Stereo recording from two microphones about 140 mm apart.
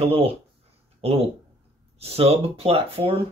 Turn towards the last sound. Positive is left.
turn(degrees=-40)  # may be behind; listen again after turning